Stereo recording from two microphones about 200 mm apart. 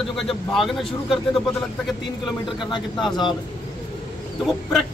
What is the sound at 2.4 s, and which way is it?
Speech, 25° left (ahead or behind).